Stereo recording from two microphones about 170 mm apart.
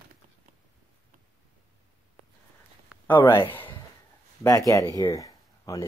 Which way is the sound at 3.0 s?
10° left (ahead or behind).